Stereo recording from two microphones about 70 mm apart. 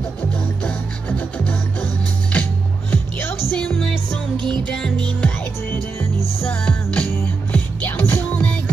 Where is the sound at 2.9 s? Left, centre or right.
Left.